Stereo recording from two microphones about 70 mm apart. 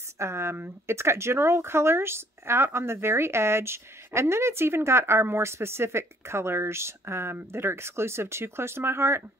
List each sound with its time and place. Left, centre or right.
0.2 s speech: right